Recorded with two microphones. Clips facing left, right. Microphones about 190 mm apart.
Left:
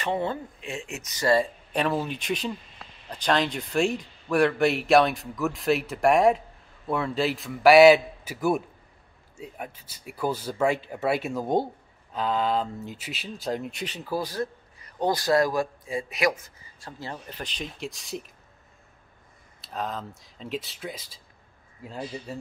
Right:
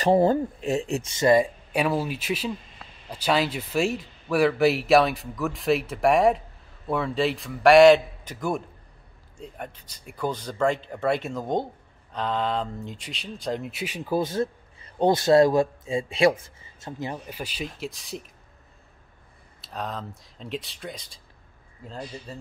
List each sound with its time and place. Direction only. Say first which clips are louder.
0.0 s speech: right 9 dB; 40° right (ahead or behind); by 18.3 s centre (ahead or behind)
19.6 s speech: left 1 dB; centre (ahead or behind)